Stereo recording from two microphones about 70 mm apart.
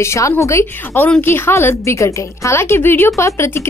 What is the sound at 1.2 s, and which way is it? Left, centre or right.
A woman's voice, left.